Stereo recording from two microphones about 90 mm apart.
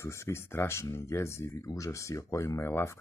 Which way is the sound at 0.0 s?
30° left (ahead or behind).